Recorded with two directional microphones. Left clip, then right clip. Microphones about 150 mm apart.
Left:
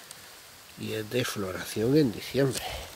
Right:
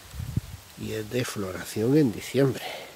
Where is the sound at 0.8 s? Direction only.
15° right (ahead or behind); by 2.8 s 40° right (ahead or behind).